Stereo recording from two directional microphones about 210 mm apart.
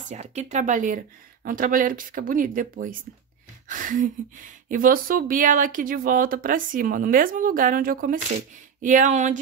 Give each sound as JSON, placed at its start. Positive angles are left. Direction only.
{"t": 0.1, "sound": "speech", "side_deg": -30}